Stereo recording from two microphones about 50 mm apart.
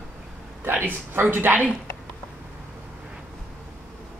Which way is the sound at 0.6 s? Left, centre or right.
Right.